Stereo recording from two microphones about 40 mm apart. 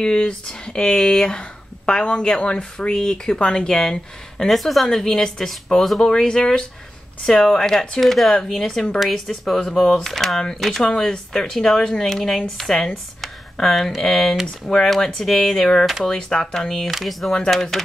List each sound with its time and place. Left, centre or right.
0.0 s speech: centre
4.5 s speech: centre
4.8 s speech: centre
7.4 s speech: centre
12.2 s speech: centre
12.7 s speech: left
13.2 s a sound: centre
14.0 s speech: centre
17.0 s speech: centre
17.3 s speech: centre